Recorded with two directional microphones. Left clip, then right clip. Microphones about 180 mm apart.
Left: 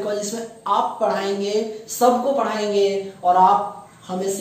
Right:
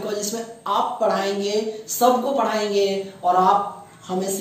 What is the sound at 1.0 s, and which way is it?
A man's voice, 5° left (ahead or behind).